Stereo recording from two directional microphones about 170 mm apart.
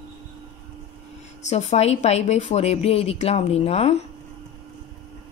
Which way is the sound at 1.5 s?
40° left (ahead or behind).